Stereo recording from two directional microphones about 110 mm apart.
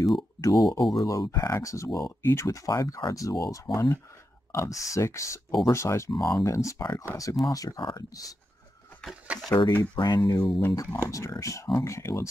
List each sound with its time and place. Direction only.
0.4 s speech: 30° left (ahead or behind)
9.5 s speech: 45° left (ahead or behind); by 12.3 s 25° left (ahead or behind)